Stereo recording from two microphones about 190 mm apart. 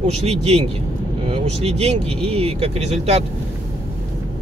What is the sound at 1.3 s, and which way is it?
Speech, 30° right (ahead or behind).